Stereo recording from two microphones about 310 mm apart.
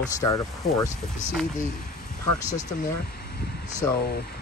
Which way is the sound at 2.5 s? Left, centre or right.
Left.